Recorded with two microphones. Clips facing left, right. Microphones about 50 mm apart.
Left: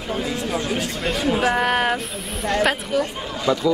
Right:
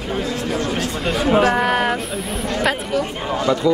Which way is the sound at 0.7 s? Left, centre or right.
Centre.